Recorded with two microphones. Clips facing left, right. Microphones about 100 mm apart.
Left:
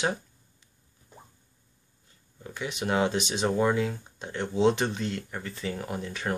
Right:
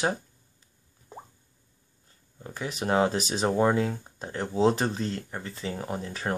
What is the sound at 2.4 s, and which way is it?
Speech, 40° right (ahead or behind).